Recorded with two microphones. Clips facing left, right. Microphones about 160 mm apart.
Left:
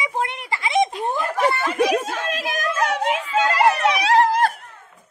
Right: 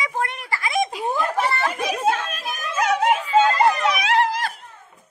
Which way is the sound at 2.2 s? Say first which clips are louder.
Left 5 dB; 90° left.